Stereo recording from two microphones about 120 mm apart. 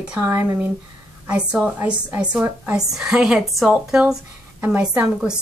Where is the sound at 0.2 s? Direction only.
20° right (ahead or behind).